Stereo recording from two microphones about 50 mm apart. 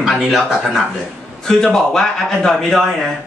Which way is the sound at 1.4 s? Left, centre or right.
Centre.